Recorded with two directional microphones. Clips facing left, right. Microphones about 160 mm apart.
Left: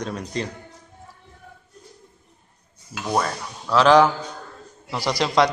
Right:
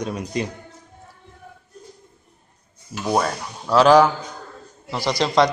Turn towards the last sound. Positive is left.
turn(degrees=5)  # may be behind; listen again after turning